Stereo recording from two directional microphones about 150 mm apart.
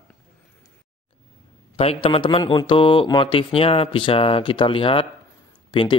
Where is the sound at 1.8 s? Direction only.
40° left (ahead or behind).